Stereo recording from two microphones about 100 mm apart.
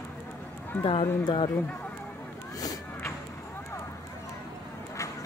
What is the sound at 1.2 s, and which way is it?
Speech, 50° left (ahead or behind).